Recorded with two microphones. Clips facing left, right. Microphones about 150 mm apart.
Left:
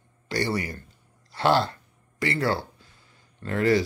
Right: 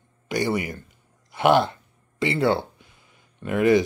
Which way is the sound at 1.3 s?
20° right (ahead or behind).